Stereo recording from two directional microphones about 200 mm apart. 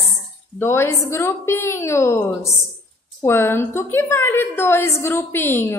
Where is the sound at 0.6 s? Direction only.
10° left (ahead or behind).